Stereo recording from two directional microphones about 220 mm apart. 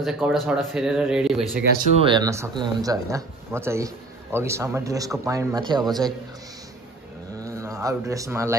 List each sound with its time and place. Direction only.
0.0 s speech: centre (ahead or behind)
2.0 s a man's voice: 20° right (ahead or behind)
7.3 s mantra: 15° right (ahead or behind)